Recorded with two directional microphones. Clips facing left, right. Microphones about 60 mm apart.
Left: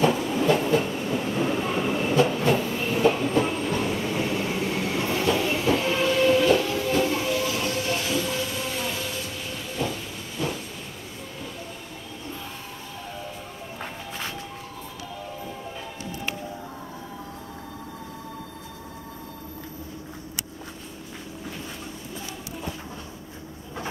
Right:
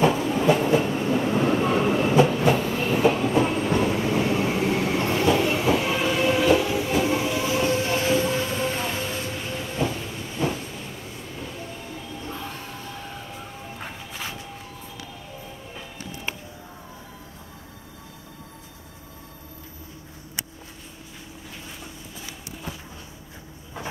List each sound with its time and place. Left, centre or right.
0.0 s train: centre
2.0 s train: centre
3.6 s train: centre; by 9.0 s right
9.8 s hiss: centre